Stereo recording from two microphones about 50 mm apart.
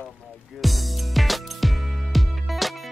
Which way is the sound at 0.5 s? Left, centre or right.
Centre.